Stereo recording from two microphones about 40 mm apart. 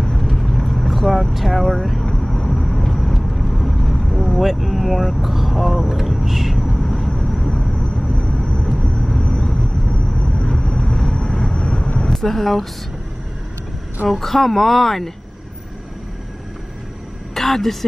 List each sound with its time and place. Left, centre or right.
0.0 s vehicle: centre
7.7 s vehicle: left
12.1 s speech: centre
14.0 s speech: centre
17.3 s a sound: centre